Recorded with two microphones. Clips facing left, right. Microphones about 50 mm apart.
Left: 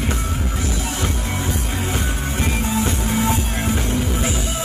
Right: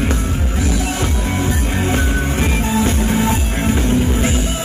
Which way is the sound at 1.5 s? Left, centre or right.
Right.